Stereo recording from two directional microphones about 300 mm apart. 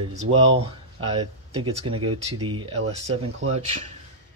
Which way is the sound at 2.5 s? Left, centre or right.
Centre.